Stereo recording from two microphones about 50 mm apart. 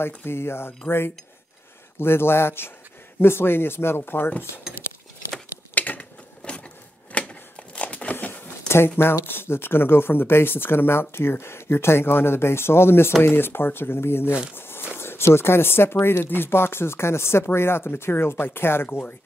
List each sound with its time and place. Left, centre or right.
0.0 s speech: left
5.8 s a sound: left
8.6 s speech: left
14.5 s walk: left
15.0 s speech: left